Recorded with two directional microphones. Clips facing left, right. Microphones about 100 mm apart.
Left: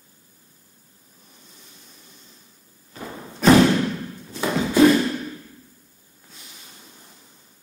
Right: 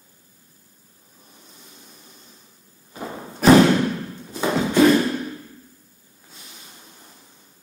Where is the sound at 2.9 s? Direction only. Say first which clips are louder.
Right 3 dB; 20° right (ahead or behind).